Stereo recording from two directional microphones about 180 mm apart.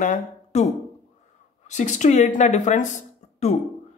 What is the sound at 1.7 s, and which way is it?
Speech, 40° left (ahead or behind).